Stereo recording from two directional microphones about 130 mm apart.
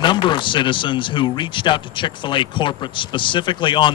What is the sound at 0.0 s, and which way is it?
A man's voice, 35° left (ahead or behind).